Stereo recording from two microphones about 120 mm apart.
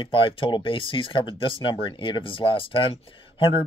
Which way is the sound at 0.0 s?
45° left (ahead or behind).